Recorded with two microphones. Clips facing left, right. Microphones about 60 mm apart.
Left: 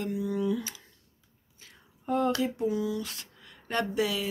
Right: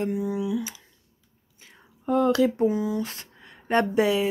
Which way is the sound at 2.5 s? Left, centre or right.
Right.